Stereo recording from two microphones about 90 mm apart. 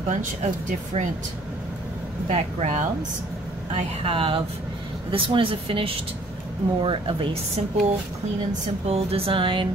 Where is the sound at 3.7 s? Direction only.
90° right.